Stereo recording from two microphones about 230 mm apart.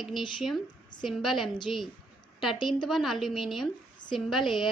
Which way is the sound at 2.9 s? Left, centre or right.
Centre.